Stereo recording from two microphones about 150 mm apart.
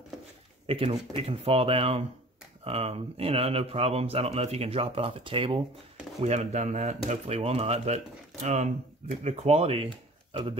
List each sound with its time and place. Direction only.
0.7 s speech: 40° right (ahead or behind)
6.2 s speech: 50° right (ahead or behind); by 10.6 s 35° right (ahead or behind)